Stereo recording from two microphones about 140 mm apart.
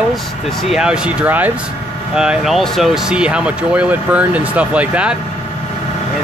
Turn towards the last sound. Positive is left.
turn(degrees=-10)  # may be behind; listen again after turning